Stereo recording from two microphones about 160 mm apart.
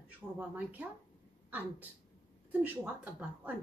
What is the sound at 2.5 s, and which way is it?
A woman's voice, 10° right (ahead or behind).